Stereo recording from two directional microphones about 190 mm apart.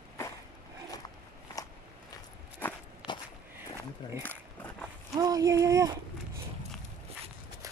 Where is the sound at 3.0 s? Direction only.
5° right (ahead or behind).